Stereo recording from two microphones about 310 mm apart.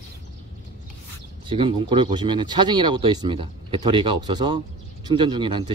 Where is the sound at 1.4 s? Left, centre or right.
Centre.